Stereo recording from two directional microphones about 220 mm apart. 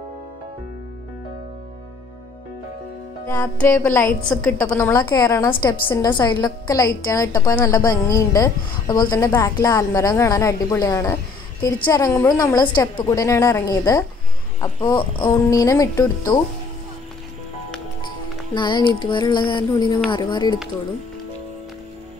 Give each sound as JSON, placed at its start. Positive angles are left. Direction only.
{"t": 3.6, "sound": "a woman's voice", "side_deg": 10}
{"t": 18.0, "sound": "music", "side_deg": 20}
{"t": 20.1, "sound": "speech", "side_deg": 20}